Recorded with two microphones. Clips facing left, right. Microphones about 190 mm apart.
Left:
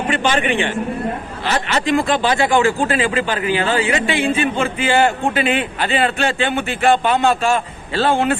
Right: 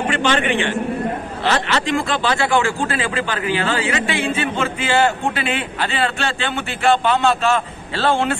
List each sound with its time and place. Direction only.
0.1 s a man's voice: 15° left (ahead or behind)
1.7 s a man's voice: 15° left (ahead or behind)